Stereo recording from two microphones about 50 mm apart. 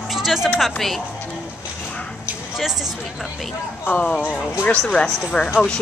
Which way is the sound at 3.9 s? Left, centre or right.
Left.